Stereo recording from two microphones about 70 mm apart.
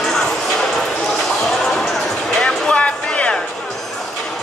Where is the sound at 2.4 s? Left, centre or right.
Centre.